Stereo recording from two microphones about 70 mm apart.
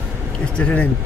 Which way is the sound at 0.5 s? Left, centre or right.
Centre.